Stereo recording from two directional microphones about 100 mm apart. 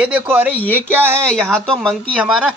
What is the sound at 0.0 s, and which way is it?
Speech, 20° right (ahead or behind).